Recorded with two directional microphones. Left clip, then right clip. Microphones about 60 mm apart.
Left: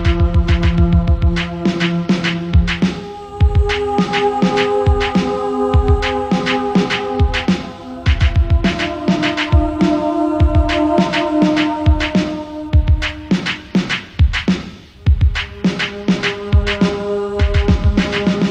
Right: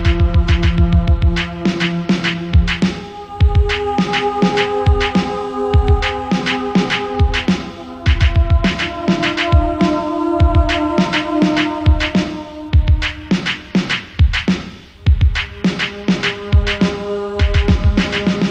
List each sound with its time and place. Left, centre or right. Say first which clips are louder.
0.0 s music: even; right